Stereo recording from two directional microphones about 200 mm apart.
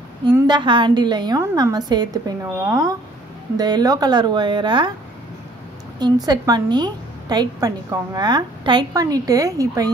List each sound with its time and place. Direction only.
0.3 s a woman's voice: 20° right (ahead or behind)
5.9 s a woman's voice: 20° right (ahead or behind)